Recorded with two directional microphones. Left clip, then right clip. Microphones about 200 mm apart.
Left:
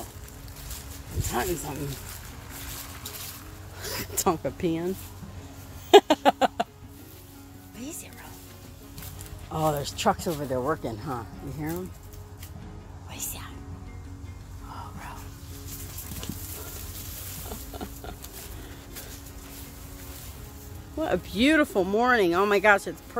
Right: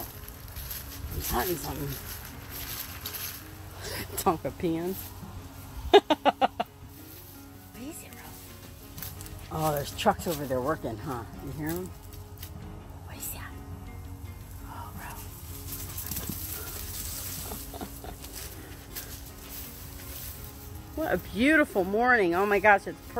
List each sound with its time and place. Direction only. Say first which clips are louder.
1.3 s speech: left 1 dB; 5° left (ahead or behind)
3.8 s speech: left 1 dB; 15° left (ahead or behind)
5.9 s a sound: left 4 dB; 25° left (ahead or behind)
9.5 s speech: left 3 dB; 5° left (ahead or behind)
9.8 s speech: left 1 dB; 15° left (ahead or behind)
13.1 s music: left 4 dB; 15° left (ahead or behind)
17.5 s a sound: left 1 dB; 15° left (ahead or behind)
21.0 s speech: left 2 dB; 20° left (ahead or behind)